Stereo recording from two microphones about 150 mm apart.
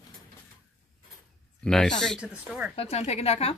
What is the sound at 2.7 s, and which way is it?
Speech, 45° left (ahead or behind).